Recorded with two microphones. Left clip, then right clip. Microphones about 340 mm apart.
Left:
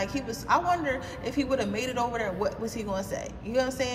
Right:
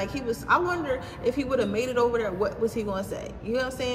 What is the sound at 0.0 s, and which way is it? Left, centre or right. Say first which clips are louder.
Speech: right 2 dB; left.